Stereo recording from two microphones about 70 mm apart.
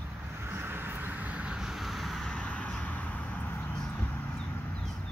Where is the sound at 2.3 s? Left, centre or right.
Centre.